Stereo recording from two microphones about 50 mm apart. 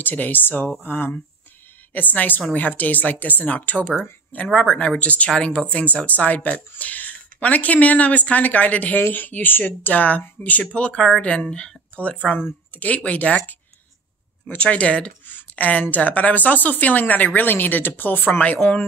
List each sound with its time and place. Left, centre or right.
0.0 s speech: left
14.6 s speech: left
15.2 s a sound: left
15.8 s speech: left